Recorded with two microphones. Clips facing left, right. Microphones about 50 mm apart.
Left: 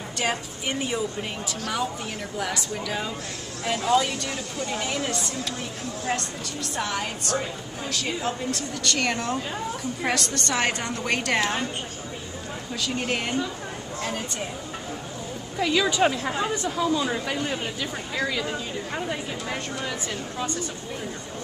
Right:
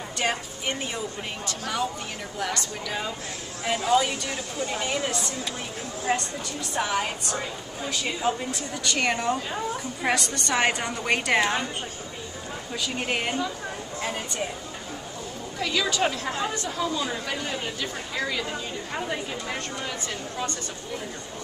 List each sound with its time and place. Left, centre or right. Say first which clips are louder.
0.2 s a woman's voice: even; centre
12.8 s a woman's voice: even; centre
15.6 s a woman's voice: left 4 dB; centre